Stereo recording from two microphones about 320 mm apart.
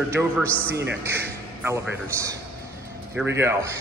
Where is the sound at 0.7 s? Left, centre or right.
Right.